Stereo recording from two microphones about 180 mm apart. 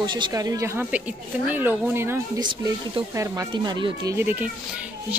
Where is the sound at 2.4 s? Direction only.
25° right (ahead or behind).